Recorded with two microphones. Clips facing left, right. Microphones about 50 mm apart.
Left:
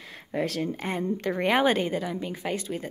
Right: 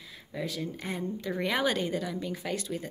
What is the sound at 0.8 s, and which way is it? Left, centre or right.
A woman's voice, left.